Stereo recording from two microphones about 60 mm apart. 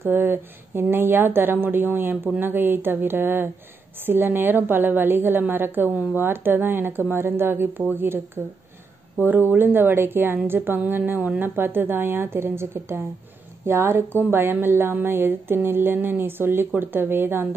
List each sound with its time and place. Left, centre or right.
0.0 s a woman's voice: right
9.2 s a woman's voice: right